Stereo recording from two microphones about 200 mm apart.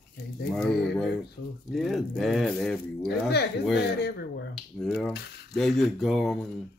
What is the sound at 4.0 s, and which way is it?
Speech, 55° left (ahead or behind).